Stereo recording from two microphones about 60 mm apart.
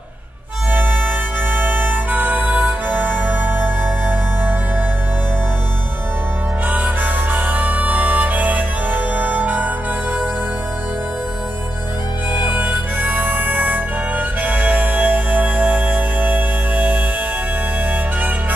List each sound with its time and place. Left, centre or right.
0.7 s music: right
6.7 s harmonica: right
12.4 s harmonica: right